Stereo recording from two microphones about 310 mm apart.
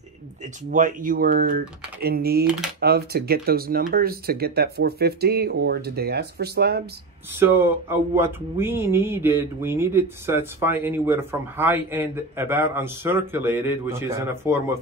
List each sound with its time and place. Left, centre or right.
0.7 s speech: right
7.3 s speech: centre